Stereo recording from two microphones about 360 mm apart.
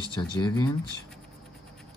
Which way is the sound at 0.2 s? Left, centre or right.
Centre.